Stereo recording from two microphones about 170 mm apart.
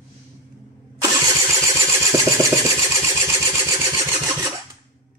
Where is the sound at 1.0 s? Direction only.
20° right (ahead or behind).